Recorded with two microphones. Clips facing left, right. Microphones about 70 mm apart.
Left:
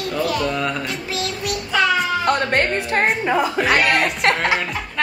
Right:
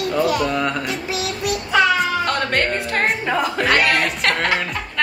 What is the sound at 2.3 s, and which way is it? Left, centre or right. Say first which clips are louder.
Speech: left 2 dB; left.